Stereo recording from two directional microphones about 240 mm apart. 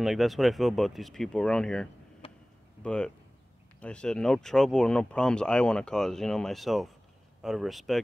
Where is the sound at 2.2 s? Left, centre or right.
Left.